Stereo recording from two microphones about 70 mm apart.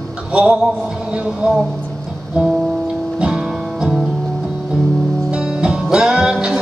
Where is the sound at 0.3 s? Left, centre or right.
Centre.